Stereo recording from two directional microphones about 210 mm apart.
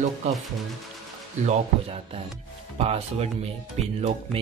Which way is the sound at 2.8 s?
30° right (ahead or behind).